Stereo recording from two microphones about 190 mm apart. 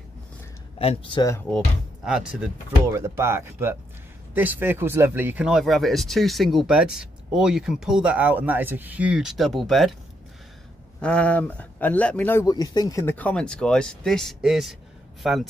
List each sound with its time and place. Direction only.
0.7 s speech: 30° left (ahead or behind)
1.2 s speech: 15° left (ahead or behind)
2.0 s speech: 5° right (ahead or behind)
2.9 s speech: 15° right (ahead or behind)
11.0 s speech: 5° left (ahead or behind)